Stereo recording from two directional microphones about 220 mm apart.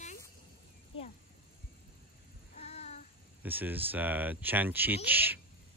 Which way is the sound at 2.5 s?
30° left (ahead or behind).